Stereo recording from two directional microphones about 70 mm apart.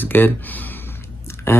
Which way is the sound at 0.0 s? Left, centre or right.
Left.